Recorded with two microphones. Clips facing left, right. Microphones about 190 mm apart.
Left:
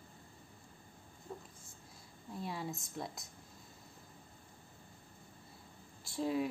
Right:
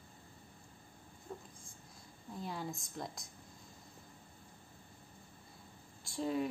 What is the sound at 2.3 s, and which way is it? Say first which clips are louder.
Speech: left 1 dB; centre (ahead or behind).